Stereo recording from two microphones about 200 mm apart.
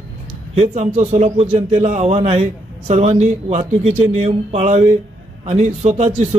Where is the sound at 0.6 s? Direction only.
35° right (ahead or behind).